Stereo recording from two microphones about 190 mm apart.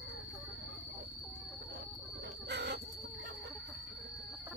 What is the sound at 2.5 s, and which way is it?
Chicken, 65° right (ahead or behind).